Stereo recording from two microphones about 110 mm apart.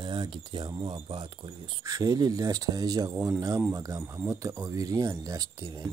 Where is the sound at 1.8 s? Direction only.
35° right (ahead or behind).